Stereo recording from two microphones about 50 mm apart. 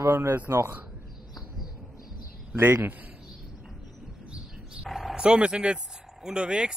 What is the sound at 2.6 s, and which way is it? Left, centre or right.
Speech, right.